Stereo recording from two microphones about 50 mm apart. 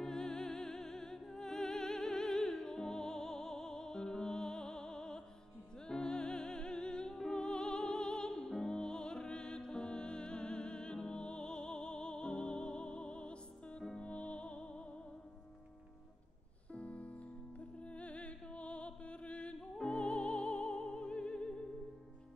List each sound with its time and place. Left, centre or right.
0.0 s music: centre
16.7 s music: left